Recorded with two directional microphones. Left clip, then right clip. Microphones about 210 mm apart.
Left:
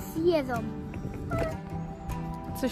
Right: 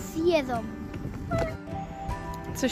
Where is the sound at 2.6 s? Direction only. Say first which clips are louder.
Right 3 dB; centre (ahead or behind).